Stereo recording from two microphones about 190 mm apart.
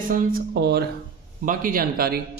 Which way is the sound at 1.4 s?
45° right (ahead or behind).